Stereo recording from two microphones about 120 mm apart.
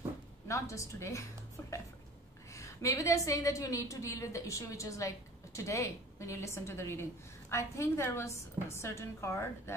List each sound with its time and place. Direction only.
0.5 s a woman's voice: 25° left (ahead or behind)
1.6 s music: 20° left (ahead or behind)
2.5 s a woman's voice: 25° left (ahead or behind)